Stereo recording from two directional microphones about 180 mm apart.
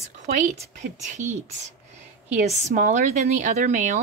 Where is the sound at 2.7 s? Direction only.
45° right (ahead or behind).